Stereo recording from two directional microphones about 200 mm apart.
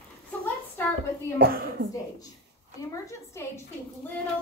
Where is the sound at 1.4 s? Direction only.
50° right (ahead or behind).